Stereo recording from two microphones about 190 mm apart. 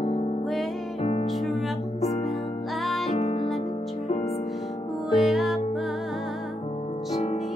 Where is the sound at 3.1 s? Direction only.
30° left (ahead or behind).